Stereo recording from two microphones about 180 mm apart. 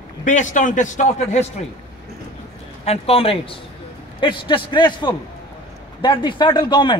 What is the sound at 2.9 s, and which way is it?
Speech, 30° left (ahead or behind).